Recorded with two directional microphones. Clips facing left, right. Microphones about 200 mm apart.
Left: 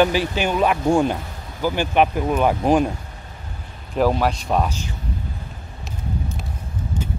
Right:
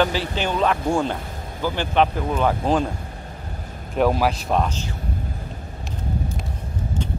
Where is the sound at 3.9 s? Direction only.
Centre (ahead or behind).